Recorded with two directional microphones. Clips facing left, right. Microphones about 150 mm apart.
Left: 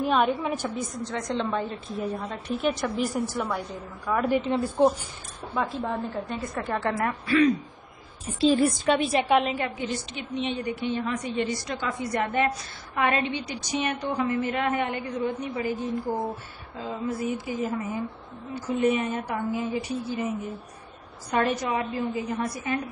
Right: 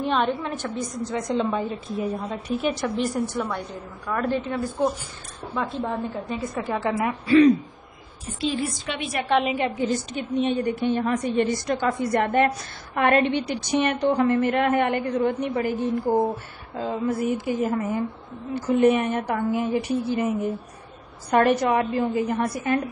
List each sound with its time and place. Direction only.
0.0 s a woman's voice: 5° left (ahead or behind)
1.0 s a woman's voice: 5° right (ahead or behind)
4.5 s a woman's voice: 30° left (ahead or behind)
5.5 s a woman's voice: centre (ahead or behind)
7.2 s speech: 25° right (ahead or behind)
8.4 s a woman's voice: 40° left (ahead or behind)
9.3 s a woman's voice: 5° right (ahead or behind)
9.8 s a woman's voice: 45° right (ahead or behind); by 15.7 s 60° right (ahead or behind)
17.2 s a woman's voice: 55° right (ahead or behind)
21.3 s a woman's voice: 60° right (ahead or behind)